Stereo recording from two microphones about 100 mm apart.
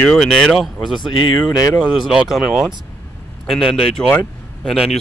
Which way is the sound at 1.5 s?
40° left (ahead or behind).